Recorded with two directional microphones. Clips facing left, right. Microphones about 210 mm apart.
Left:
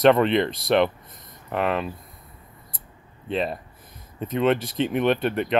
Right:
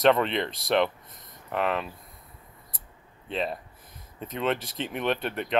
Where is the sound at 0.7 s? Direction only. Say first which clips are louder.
Left 4 dB; 5° left (ahead or behind).